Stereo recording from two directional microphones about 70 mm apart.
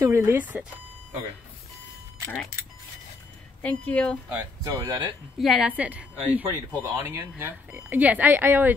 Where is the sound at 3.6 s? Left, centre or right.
Centre.